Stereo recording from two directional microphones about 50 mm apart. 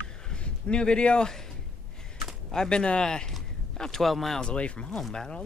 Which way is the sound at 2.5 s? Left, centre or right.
Centre.